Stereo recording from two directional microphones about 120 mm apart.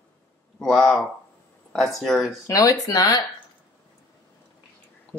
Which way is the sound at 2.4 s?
25° left (ahead or behind).